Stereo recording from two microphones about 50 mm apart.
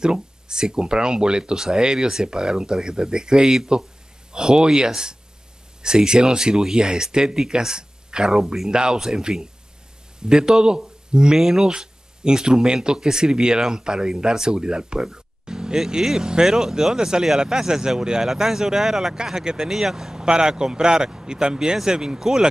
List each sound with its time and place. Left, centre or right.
0.0 s speech: centre